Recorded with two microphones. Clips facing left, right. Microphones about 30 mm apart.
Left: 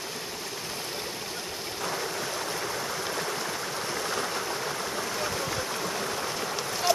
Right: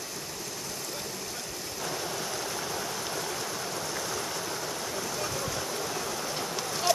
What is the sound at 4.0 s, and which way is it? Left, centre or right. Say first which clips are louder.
Stream: left 3 dB; left.